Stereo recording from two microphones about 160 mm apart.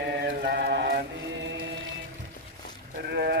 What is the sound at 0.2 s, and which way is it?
Mantra, 90° right.